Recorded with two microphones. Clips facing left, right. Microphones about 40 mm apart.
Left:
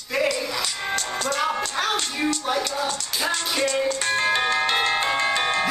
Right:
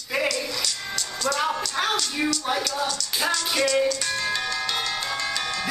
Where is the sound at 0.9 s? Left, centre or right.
Left.